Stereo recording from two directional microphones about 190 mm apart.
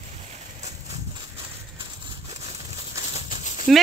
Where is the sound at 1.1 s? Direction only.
25° right (ahead or behind).